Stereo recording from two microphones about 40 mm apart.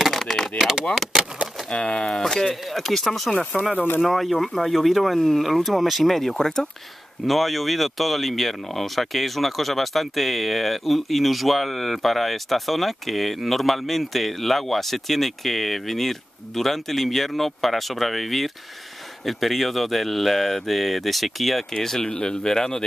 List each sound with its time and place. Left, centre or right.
0.0 s a sound: centre
1.7 s speech: left; by 3.3 s centre
3.6 s speech: left
4.1 s speech: centre
6.3 s speech: centre
7.2 s speech: centre
21.7 s speech: centre